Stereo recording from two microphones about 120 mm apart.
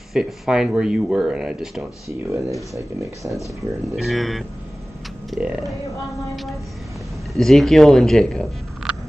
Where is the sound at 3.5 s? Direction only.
25° right (ahead or behind).